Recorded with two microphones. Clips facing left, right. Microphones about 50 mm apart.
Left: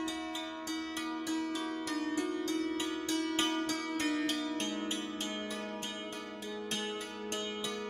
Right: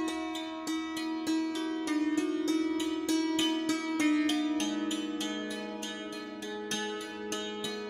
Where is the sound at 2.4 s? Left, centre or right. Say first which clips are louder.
Right 5 dB; right.